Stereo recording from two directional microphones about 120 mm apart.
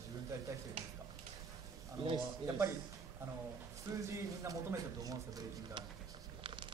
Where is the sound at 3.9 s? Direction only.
25° right (ahead or behind).